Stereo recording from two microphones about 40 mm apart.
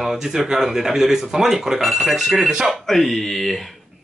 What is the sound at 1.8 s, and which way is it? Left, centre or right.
Speech, centre.